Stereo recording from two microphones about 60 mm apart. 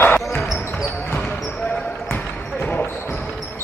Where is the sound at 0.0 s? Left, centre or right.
Left.